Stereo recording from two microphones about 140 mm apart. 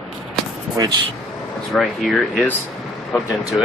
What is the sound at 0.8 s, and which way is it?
Speech, 25° right (ahead or behind).